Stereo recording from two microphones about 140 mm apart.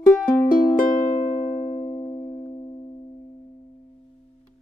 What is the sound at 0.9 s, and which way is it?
Music, 30° left (ahead or behind).